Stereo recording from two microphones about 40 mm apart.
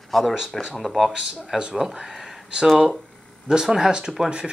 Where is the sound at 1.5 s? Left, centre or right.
Centre.